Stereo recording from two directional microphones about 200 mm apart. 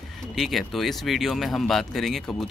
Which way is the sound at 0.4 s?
Centre (ahead or behind).